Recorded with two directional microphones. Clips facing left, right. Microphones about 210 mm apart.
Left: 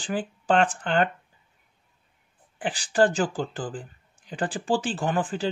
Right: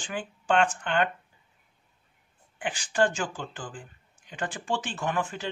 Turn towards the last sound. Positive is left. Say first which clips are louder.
# left 4 dB
turn(degrees=30)  # may be behind; listen again after turning